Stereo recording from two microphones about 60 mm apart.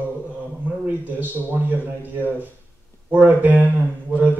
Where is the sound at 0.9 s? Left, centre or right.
Right.